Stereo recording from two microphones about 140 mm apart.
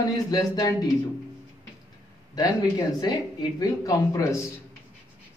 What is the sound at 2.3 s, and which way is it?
Speech, 30° left (ahead or behind).